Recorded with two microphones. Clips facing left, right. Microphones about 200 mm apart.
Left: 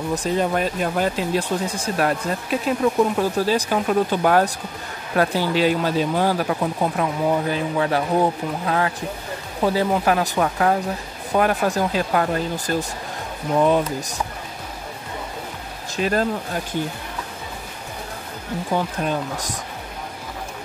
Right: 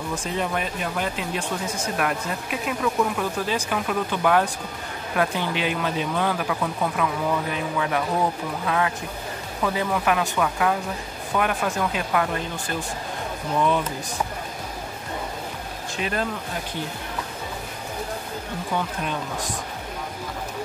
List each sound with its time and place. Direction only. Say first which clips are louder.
0.1 s speech: left 6 dB; 40° left (ahead or behind)
16.0 s speech: left 6 dB; 40° left (ahead or behind)
18.8 s speech: left 4 dB; 40° left (ahead or behind)